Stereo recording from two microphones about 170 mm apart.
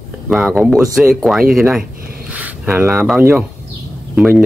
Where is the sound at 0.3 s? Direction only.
Centre (ahead or behind).